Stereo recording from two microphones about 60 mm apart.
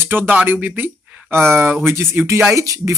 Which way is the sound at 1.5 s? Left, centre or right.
Right.